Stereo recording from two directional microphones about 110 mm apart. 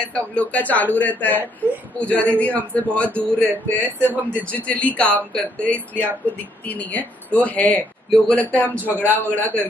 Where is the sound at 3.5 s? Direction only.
15° right (ahead or behind).